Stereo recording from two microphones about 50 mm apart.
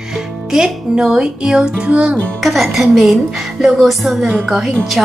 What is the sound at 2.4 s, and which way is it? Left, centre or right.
A woman's voice, centre.